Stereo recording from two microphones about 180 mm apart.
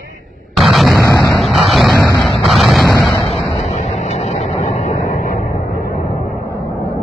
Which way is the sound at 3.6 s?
40° left (ahead or behind).